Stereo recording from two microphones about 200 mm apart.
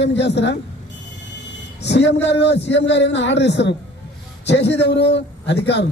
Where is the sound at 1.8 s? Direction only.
60° left (ahead or behind).